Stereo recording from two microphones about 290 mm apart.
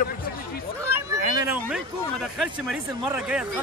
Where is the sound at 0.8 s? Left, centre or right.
Centre.